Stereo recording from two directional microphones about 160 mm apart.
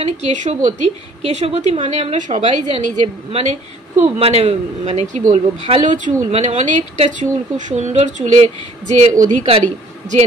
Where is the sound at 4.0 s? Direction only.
40° right (ahead or behind).